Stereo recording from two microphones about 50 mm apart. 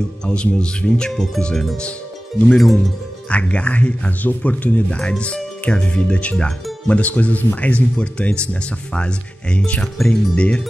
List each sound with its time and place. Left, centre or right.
0.3 s speech: left
1.1 s speech: centre
3.3 s speech: left
10.0 s speech: centre
10.3 s speech: left